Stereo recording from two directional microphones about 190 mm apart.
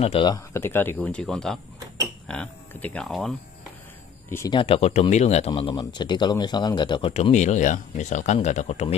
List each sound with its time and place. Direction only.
0.0 s speech: 30° left (ahead or behind)
0.5 s speech: 10° left (ahead or behind)
4.3 s speech: 15° left (ahead or behind)
4.6 s speech: 30° left (ahead or behind)